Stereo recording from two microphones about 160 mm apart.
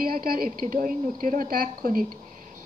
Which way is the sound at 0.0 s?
65° right (ahead or behind).